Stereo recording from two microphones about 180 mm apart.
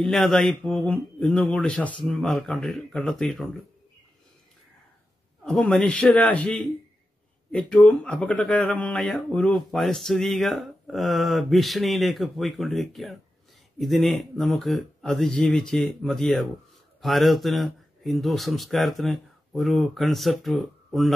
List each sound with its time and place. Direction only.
0.0 s speech: centre (ahead or behind)
5.4 s speech: centre (ahead or behind)